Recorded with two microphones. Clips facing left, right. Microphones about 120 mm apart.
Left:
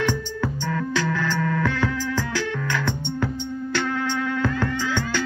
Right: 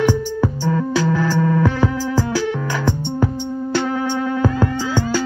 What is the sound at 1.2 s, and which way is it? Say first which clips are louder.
Music: right 6 dB; 30° right (ahead or behind).